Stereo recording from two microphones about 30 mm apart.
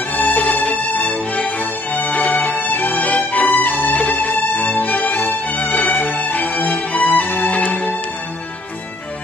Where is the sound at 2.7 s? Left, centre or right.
Left.